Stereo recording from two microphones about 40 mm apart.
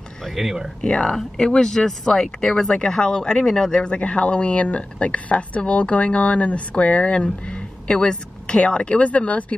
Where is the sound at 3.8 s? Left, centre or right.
Left.